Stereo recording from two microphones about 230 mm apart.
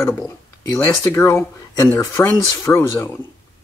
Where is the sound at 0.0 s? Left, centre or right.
Centre.